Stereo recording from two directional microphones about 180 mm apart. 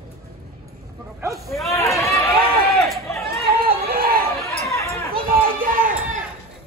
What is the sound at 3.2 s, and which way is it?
Chatter, 55° right (ahead or behind).